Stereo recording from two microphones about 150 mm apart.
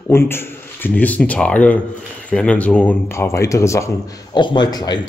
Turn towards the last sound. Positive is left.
turn(degrees=30)  # may be behind; listen again after turning